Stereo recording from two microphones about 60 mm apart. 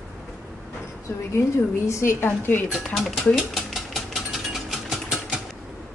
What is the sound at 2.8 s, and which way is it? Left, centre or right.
Speech, centre.